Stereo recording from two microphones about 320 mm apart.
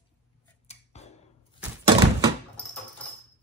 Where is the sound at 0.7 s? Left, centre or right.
Centre.